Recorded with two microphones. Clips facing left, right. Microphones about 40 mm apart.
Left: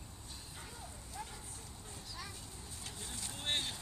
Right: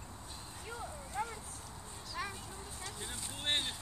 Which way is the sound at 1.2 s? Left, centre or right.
Right.